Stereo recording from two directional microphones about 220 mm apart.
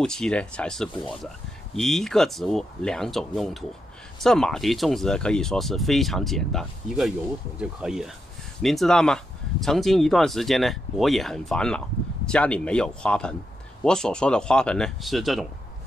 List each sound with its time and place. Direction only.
0.0 s speech: 5° left (ahead or behind)